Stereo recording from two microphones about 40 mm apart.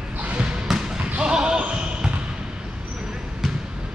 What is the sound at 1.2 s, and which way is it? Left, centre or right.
Basketball bounce, right.